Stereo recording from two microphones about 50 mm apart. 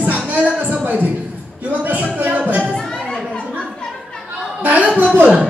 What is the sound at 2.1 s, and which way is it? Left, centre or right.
Music, right.